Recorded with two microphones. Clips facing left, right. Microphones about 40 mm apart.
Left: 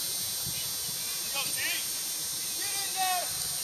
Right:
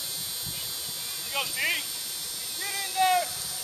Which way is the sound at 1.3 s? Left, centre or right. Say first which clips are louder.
Right 6 dB; right.